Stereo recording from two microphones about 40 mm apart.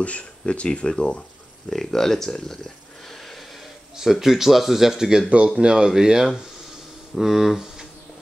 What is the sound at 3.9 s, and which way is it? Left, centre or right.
Speech, centre.